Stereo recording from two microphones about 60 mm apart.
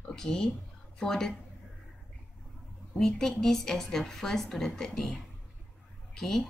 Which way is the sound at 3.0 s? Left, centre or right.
Centre.